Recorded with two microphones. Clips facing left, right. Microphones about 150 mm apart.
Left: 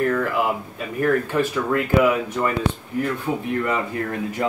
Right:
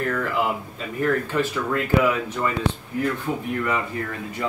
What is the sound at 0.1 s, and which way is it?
Speech, 10° left (ahead or behind).